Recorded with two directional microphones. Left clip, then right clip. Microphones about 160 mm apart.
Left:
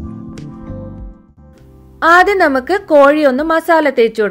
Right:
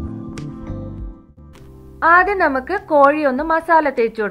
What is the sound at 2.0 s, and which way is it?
A woman's voice, 50° left (ahead or behind).